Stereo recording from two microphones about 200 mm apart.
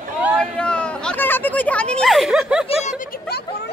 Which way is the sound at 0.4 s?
5° left (ahead or behind).